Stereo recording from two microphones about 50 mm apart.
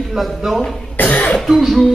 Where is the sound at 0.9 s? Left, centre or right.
Left.